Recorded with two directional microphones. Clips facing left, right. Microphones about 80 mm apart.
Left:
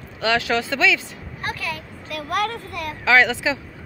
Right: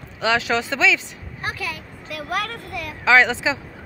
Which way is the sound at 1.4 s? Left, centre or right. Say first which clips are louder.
Even; centre.